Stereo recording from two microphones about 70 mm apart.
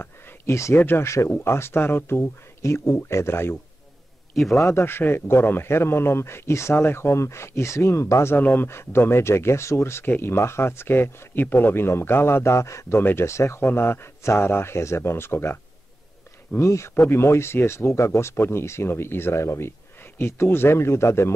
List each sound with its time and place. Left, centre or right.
0.0 s a sound: left
0.7 s a man's voice: left
4.6 s a man's voice: left
8.4 s speech: left
8.6 s a man's voice: left
13.6 s a man's voice: left
16.5 s a man's voice: left